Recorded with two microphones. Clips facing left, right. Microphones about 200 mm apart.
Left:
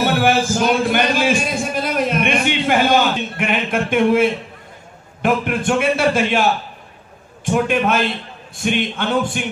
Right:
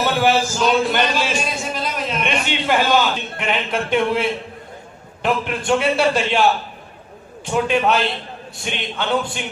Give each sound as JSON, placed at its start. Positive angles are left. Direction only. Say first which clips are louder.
{"t": 0.0, "sound": "a sound", "louder": "left 1 dB", "side_deg": 50}
{"t": 5.2, "sound": "a man's voice", "louder": "left 3 dB", "side_deg": 50}
{"t": 7.5, "sound": "a man's voice", "louder": "left 1 dB", "side_deg": 50}